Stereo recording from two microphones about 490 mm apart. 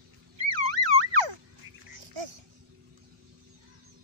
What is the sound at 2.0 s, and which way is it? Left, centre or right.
Babbling, right.